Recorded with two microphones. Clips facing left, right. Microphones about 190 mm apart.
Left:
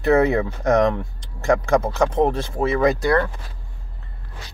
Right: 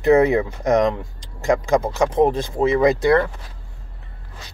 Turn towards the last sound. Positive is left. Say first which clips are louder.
# right 2 dB
turn(degrees=-20)  # may be behind; listen again after turning